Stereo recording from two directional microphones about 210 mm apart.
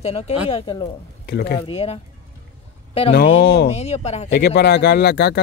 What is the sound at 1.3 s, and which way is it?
Speech, 50° left (ahead or behind).